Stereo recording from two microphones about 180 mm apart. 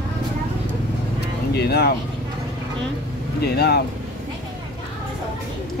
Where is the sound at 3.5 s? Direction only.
65° left (ahead or behind).